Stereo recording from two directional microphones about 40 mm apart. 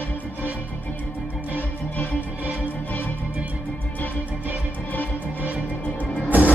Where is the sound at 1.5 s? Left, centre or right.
Left.